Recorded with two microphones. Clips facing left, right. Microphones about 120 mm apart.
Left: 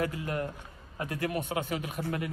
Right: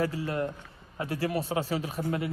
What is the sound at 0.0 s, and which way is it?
A man's voice, 30° right (ahead or behind).